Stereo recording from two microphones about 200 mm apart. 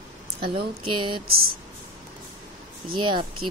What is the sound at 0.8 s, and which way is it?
Speech, 25° right (ahead or behind).